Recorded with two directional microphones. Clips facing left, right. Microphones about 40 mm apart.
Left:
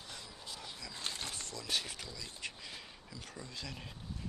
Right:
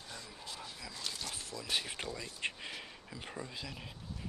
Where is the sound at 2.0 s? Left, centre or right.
Right.